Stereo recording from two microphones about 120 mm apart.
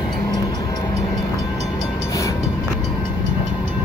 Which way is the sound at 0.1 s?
35° left (ahead or behind).